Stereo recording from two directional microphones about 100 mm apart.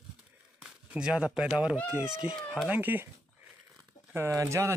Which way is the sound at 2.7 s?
20° right (ahead or behind).